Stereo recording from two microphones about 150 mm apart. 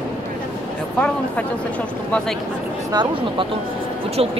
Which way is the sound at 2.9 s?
30° right (ahead or behind).